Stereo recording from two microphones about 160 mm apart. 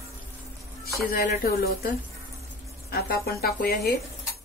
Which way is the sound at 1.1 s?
70° left (ahead or behind).